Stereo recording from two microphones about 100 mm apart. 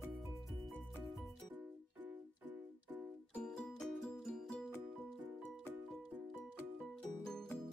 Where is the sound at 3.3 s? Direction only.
5° left (ahead or behind).